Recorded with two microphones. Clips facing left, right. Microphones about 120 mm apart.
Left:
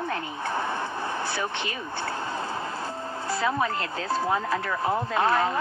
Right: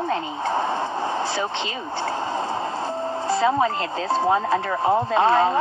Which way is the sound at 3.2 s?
25° right (ahead or behind).